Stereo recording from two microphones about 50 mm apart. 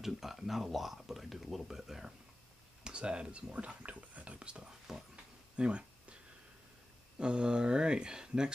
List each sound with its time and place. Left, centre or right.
0.0 s speech: centre
2.8 s speech: centre
5.1 s a sound: right
7.2 s speech: centre